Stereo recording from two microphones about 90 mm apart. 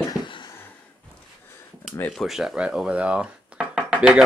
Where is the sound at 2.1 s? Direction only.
Centre (ahead or behind).